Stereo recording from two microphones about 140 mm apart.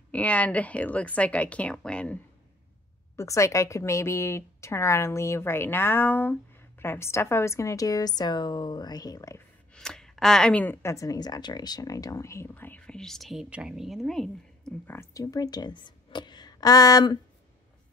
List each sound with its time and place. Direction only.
0.1 s speech: 10° left (ahead or behind)
3.2 s a woman's voice: 20° left (ahead or behind)
9.8 s speech: 5° left (ahead or behind)
14.9 s a woman's voice: 20° left (ahead or behind)